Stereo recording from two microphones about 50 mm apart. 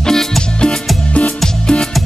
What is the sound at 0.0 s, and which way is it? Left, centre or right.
Music, centre.